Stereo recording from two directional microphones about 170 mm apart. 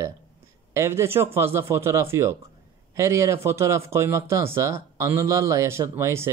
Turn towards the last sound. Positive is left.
turn(degrees=-15)  # may be behind; listen again after turning